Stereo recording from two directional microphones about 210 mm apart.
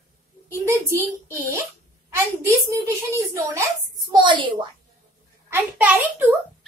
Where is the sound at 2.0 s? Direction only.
15° right (ahead or behind).